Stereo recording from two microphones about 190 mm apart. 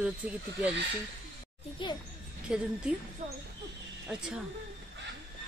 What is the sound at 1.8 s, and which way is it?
Speech, 25° left (ahead or behind).